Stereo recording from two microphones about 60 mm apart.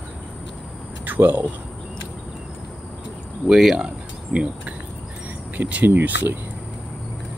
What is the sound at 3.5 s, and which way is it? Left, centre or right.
Speech, centre.